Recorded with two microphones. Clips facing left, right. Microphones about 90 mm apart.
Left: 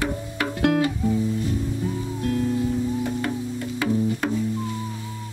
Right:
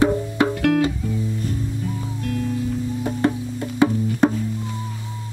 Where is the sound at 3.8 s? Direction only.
25° right (ahead or behind).